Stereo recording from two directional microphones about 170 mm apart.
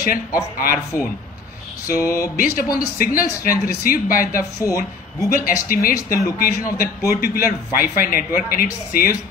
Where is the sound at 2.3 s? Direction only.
60° left (ahead or behind).